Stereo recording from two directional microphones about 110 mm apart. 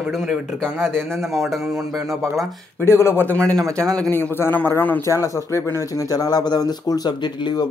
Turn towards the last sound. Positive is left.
turn(degrees=40)  # may be behind; listen again after turning